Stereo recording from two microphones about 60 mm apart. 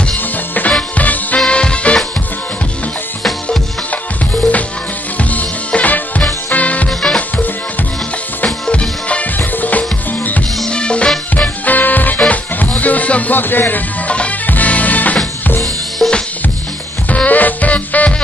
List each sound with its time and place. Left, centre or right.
0.6 s music: left
1.4 s music: centre
5.3 s music: left
8.5 s music: centre
9.4 s music: left
10.7 s music: centre
14.1 s music: centre
16.0 s drum kit: centre
17.1 s music: left